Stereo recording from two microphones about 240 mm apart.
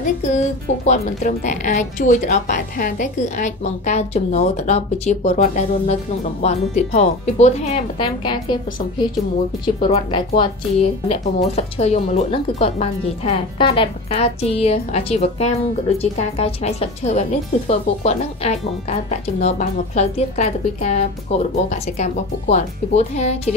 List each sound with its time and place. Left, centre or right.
0.0 s a woman's voice: left
9.8 s a woman's voice: left